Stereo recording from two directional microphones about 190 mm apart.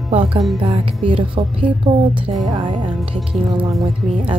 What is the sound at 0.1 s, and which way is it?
Music, 30° right (ahead or behind).